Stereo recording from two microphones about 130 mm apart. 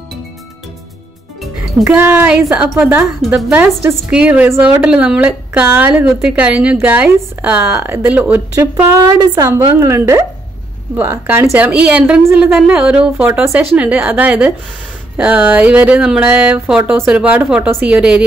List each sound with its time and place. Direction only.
1.9 s a woman's voice: 15° right (ahead or behind)
4.1 s a woman's voice: 10° right (ahead or behind)